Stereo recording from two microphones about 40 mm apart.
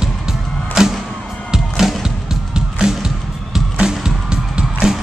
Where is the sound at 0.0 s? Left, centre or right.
Centre.